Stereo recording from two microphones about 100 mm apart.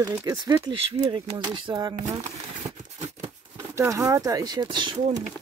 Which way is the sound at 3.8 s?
30° right (ahead or behind).